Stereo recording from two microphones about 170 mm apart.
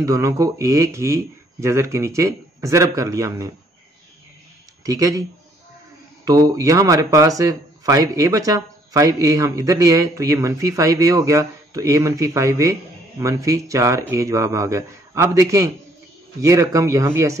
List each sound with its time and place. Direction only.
0.0 s speech: 20° right (ahead or behind)
4.8 s speech: 20° right (ahead or behind)
6.2 s speech: 20° right (ahead or behind)